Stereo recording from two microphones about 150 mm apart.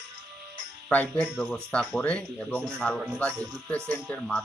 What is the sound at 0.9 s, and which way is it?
Speech, 10° left (ahead or behind).